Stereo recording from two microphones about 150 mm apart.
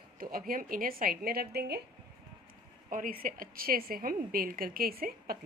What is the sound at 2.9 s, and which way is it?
A woman's voice, 70° right (ahead or behind).